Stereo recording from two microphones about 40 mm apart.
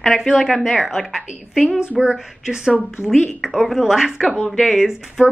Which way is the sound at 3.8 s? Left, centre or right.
Centre.